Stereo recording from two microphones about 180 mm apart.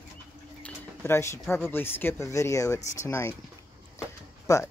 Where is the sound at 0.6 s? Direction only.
10° left (ahead or behind).